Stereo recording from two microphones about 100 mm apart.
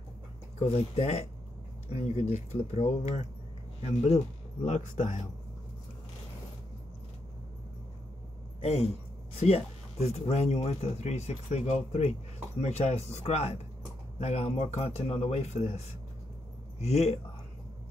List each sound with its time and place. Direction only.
0.6 s speech: 80° left
8.5 s speech: 90° left